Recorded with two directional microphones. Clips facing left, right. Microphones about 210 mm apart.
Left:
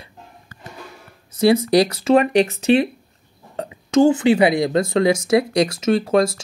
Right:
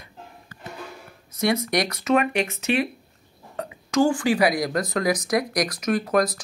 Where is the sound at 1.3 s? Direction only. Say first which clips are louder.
Left 8 dB; 30° left (ahead or behind).